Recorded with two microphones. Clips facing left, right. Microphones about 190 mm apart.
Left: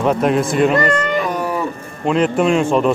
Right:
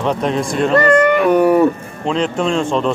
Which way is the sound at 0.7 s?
60° right (ahead or behind).